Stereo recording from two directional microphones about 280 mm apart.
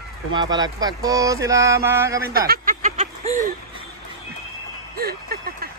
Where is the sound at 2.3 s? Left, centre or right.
Right.